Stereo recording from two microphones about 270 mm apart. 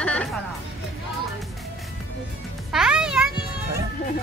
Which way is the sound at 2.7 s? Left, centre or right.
Centre.